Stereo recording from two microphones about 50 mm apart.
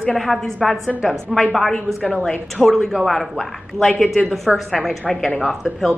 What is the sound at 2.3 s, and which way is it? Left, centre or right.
Speech, centre.